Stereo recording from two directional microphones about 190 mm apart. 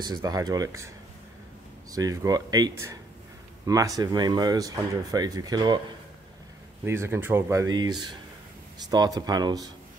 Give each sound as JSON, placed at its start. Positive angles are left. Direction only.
{"t": 0.0, "sound": "speech", "side_deg": -20}
{"t": 1.9, "sound": "speech", "side_deg": -20}
{"t": 6.8, "sound": "speech", "side_deg": -10}